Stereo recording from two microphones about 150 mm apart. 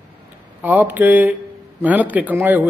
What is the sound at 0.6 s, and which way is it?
A man's voice, 10° right (ahead or behind).